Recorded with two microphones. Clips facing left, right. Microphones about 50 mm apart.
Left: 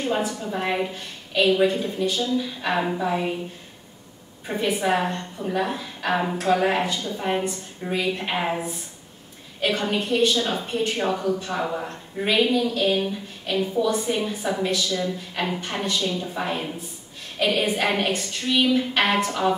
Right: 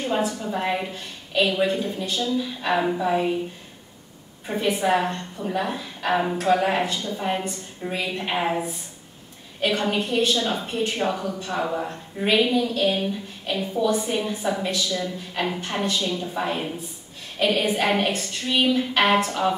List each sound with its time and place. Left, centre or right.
0.0 s a woman's voice: centre
4.5 s a woman's voice: centre
18.5 s a sound: centre
18.8 s a woman's voice: centre